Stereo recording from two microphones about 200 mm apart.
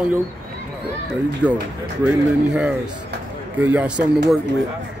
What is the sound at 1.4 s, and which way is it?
Speech, 5° right (ahead or behind).